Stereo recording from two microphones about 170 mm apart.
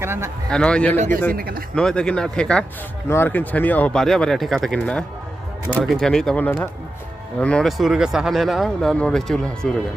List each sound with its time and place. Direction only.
0.0 s speech: 15° right (ahead or behind)
0.5 s speech: 5° left (ahead or behind)
0.9 s a man's voice: 45° right (ahead or behind)
1.3 s speech: 60° right (ahead or behind)
1.8 s speech: 5° left (ahead or behind)